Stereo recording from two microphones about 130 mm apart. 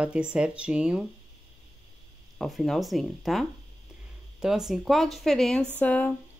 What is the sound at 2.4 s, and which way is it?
Speech, centre (ahead or behind).